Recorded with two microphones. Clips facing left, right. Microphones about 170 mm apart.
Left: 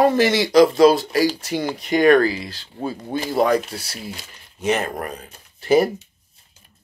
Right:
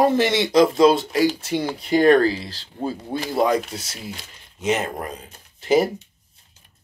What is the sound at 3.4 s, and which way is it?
Speech, 20° right (ahead or behind).